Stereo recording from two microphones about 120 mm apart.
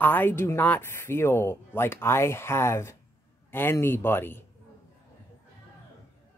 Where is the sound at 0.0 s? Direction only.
15° left (ahead or behind).